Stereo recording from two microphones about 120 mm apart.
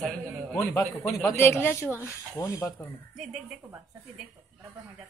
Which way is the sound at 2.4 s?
30° left (ahead or behind).